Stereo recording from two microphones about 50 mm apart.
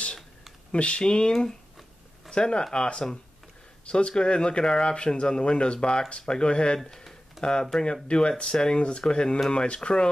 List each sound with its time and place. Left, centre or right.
0.7 s speech: left
6.8 s a sound: centre
7.8 s speech: centre